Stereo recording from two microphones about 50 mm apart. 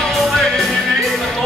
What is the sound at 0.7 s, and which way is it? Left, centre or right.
Music, centre.